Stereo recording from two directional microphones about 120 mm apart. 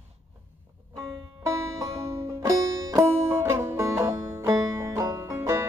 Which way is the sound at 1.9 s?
25° right (ahead or behind).